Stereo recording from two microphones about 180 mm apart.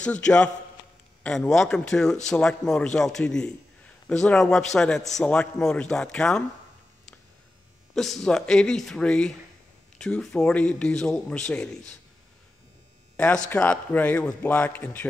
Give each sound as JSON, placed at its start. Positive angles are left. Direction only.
{"t": 0.0, "sound": "a man's voice", "side_deg": 5}
{"t": 7.9, "sound": "a man's voice", "side_deg": 0}
{"t": 13.1, "sound": "speech", "side_deg": 10}